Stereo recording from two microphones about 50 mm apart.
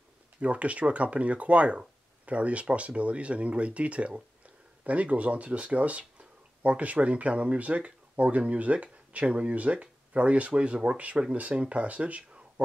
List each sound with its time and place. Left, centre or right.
0.4 s speech: right